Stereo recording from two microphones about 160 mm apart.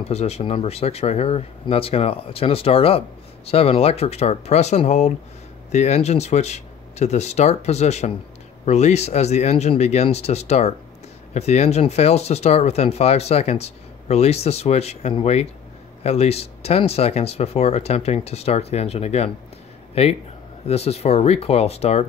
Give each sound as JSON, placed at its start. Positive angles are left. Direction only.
{"t": 0.0, "sound": "speech", "side_deg": 40}